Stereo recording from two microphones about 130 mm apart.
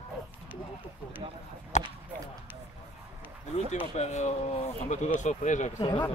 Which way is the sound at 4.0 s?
65° left (ahead or behind).